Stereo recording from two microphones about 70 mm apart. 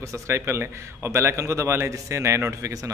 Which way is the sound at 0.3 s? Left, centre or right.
Right.